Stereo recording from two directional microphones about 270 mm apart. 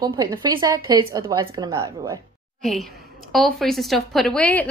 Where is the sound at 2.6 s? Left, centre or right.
Centre.